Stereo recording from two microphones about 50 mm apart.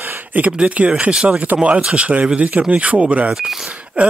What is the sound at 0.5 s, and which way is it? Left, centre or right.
Speech, right.